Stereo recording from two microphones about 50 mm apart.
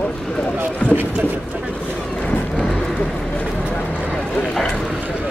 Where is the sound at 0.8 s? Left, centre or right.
Left.